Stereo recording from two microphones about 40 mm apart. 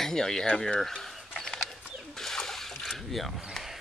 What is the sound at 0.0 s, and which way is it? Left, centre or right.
Speech, centre.